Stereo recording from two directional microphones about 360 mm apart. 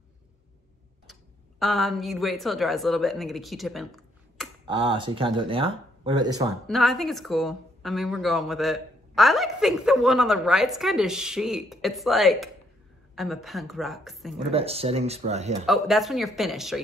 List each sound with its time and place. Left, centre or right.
1.6 s speech: centre
4.6 s speech: centre
6.7 s speech: centre
14.5 s speech: centre
15.6 s speech: centre